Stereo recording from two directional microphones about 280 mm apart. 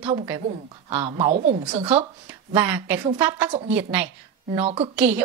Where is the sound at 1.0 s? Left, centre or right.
Right.